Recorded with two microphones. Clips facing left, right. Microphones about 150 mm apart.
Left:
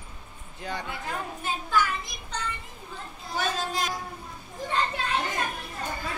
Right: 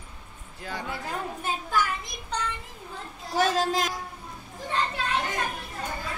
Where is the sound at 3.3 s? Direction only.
90° right.